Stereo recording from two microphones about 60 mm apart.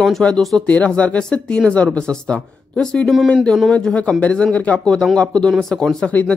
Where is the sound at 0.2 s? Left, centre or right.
Centre.